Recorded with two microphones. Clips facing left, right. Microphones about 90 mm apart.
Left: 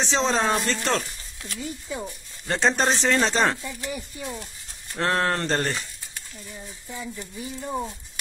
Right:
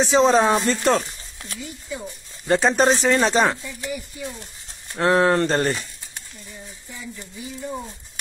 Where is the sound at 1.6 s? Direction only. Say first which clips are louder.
Left 1 dB; 30° left (ahead or behind).